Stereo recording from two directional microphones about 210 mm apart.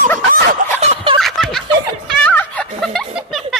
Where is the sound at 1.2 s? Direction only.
Centre (ahead or behind).